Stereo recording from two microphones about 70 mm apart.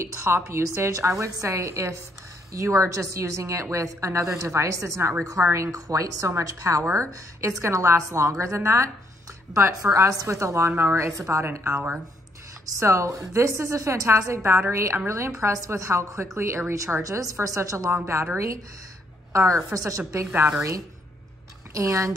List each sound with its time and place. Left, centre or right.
0.0 s a woman's voice: right
12.6 s a woman's voice: right
18.2 s speech: right
19.3 s a woman's voice: right
21.7 s a woman's voice: right